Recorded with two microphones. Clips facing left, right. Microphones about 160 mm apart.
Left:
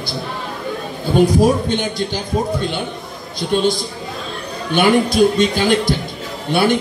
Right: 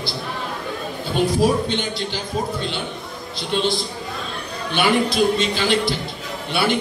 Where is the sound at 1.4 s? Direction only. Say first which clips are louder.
Left 4 dB; 45° left (ahead or behind).